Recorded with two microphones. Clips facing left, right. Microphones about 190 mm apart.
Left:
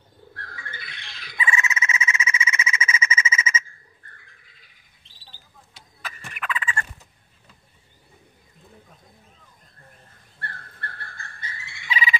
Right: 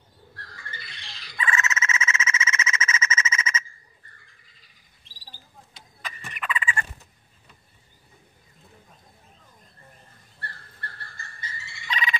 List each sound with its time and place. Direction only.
0.3 s bird: 55° left (ahead or behind)
1.4 s a sound: 10° left (ahead or behind)
4.2 s bird: 60° left (ahead or behind)
6.0 s turkey: centre (ahead or behind)
6.6 s gobble: 15° right (ahead or behind)
10.4 s turkey: 55° left (ahead or behind)
11.9 s frog: 5° left (ahead or behind)